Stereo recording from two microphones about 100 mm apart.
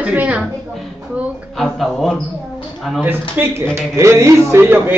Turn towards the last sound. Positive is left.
turn(degrees=-20)  # may be behind; listen again after turning